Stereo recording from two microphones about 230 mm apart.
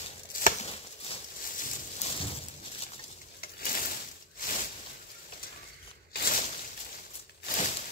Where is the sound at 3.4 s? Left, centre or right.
Left.